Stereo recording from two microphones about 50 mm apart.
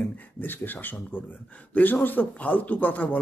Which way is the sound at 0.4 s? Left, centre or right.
Left.